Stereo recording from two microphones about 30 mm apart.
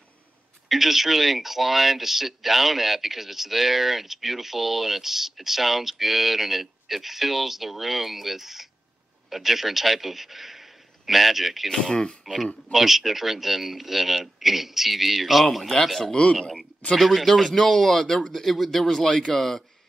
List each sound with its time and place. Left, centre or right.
0.7 s a man's voice: centre
11.9 s speech: left
12.7 s speech: centre
15.7 s speech: centre
16.9 s speech: centre
19.0 s speech: left
19.3 s speech: centre